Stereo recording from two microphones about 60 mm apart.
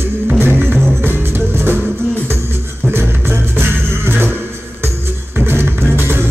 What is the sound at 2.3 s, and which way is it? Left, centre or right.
Beatboxing, right.